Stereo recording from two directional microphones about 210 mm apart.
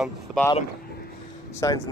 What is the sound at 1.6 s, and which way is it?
Speech, 20° left (ahead or behind).